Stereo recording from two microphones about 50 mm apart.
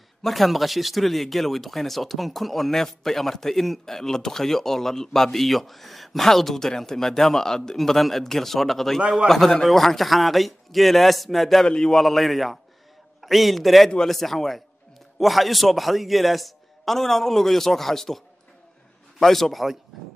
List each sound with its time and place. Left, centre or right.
0.2 s speech: centre
11.6 s a man's voice: centre
12.0 s speech: centre